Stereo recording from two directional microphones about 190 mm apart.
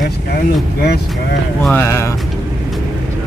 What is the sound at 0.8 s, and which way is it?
Speech, 60° left (ahead or behind).